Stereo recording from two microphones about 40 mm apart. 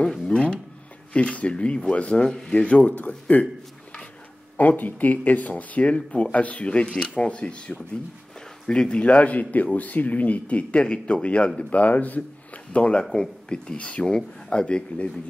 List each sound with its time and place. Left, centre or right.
0.3 s speech: left
2.2 s speech: centre
2.5 s speech: left
3.1 s speech: left
4.6 s speech: left
9.0 s speech: left
13.1 s speech: centre